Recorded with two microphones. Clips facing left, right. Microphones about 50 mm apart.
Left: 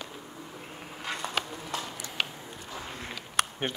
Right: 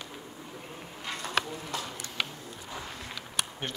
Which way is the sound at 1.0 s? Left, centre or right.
Centre.